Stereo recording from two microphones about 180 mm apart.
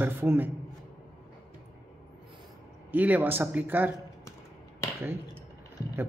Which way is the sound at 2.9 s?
10° right (ahead or behind).